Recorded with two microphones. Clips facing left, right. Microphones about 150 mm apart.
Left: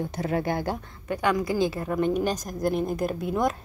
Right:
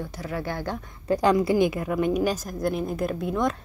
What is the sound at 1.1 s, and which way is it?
Speech, 30° right (ahead or behind).